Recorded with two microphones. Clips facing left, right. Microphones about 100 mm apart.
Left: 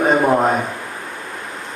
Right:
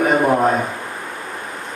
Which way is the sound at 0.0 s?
20° left (ahead or behind).